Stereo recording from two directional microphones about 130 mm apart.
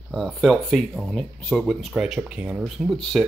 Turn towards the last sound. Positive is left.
turn(degrees=0)  # may be behind; listen again after turning